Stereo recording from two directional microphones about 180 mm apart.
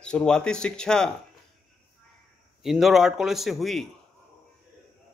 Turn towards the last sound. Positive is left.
turn(degrees=0)  # may be behind; listen again after turning